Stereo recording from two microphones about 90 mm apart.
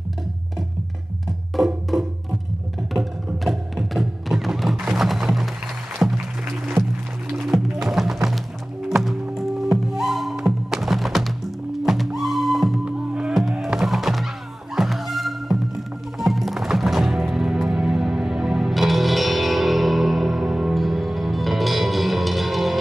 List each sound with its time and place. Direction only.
3.4 s music: centre (ahead or behind)
6.0 s music: 15° right (ahead or behind)
7.3 s music: 5° right (ahead or behind)